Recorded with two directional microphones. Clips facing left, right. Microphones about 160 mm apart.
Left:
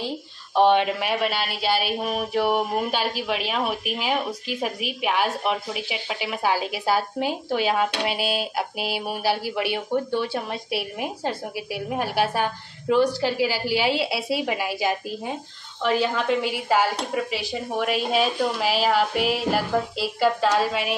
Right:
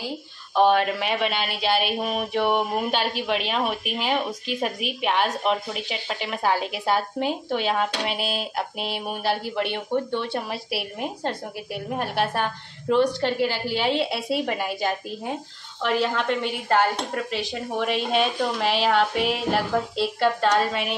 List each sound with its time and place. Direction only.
0.6 s speech: 25° left (ahead or behind)
0.9 s speech: 5° left (ahead or behind)